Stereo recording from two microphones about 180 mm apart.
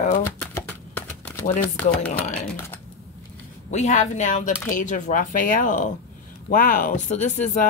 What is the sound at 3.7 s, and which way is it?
Speech, 40° left (ahead or behind).